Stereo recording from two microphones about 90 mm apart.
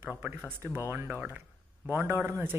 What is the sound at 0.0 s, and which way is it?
Speech, 20° right (ahead or behind).